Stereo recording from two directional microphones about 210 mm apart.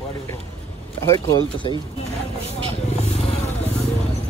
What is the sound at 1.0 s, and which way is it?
Speech, 15° left (ahead or behind).